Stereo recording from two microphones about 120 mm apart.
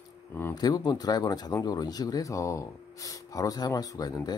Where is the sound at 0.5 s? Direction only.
35° left (ahead or behind).